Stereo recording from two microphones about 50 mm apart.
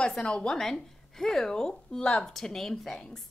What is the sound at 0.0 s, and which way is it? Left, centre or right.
Speech, centre.